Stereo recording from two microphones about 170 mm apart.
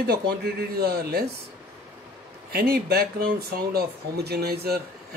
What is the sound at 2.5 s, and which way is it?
Speech, 65° right (ahead or behind).